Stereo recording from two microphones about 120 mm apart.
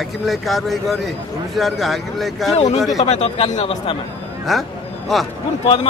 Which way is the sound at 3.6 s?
45° left (ahead or behind).